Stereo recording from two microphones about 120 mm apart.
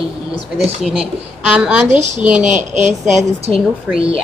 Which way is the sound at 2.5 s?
85° right.